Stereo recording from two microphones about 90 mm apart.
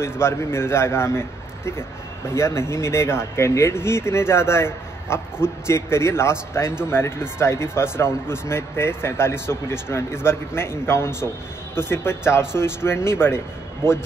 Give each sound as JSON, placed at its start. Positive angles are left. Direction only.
{"t": 0.0, "sound": "a man's voice", "side_deg": 30}